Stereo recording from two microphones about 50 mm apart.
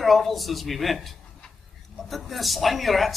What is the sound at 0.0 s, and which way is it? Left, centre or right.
A man's voice, centre.